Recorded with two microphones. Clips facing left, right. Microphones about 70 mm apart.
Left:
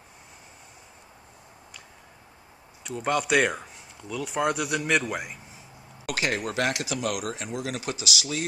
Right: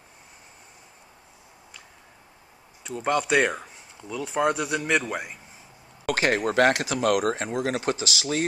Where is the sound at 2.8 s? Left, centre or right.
Centre.